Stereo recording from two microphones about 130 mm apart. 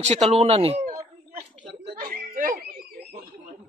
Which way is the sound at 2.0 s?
90° right.